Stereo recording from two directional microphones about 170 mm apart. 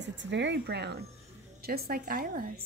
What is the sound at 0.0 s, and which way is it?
A woman's voice, 90° right.